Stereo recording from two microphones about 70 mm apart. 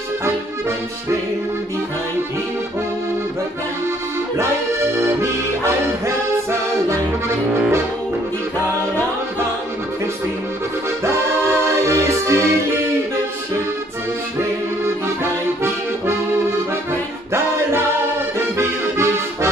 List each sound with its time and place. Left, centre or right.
4.4 s accordion: right
11.4 s music: right
18.6 s accordion: right